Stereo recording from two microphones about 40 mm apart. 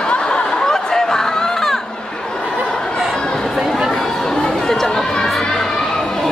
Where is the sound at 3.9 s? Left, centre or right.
Centre.